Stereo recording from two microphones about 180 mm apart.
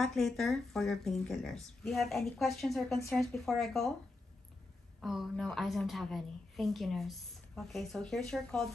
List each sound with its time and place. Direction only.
0.0 s a woman's voice: centre (ahead or behind)
5.0 s a woman's voice: centre (ahead or behind)